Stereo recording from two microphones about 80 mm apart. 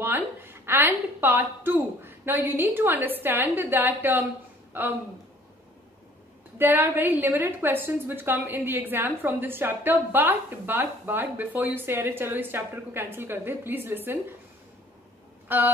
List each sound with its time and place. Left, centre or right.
0.0 s a woman's voice: right
6.6 s a woman's voice: right
15.4 s speech: right